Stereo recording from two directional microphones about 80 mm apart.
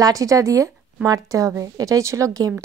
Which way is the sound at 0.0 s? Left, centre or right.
Right.